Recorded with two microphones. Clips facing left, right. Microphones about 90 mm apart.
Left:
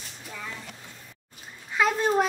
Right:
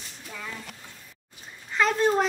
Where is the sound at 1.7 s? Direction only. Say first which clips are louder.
Right 1 dB; 5° left (ahead or behind).